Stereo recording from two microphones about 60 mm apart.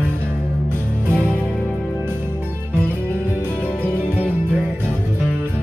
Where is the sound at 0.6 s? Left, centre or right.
Right.